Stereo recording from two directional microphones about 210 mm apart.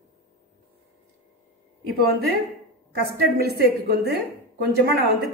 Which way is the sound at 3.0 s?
50° right (ahead or behind).